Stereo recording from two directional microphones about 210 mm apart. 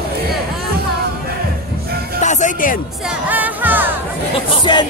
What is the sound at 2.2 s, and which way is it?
Speech, 35° left (ahead or behind).